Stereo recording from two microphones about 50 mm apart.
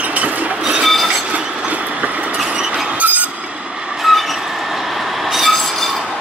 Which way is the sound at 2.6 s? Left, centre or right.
Centre.